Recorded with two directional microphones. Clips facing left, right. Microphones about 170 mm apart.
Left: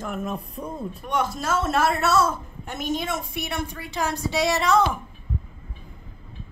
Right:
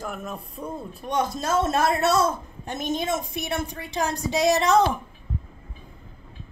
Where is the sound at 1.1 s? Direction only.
20° right (ahead or behind).